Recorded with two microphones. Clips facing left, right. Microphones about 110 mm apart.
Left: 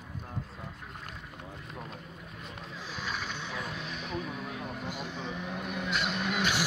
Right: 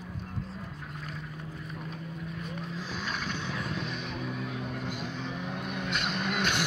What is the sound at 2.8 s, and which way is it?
Vehicle, 15° left (ahead or behind).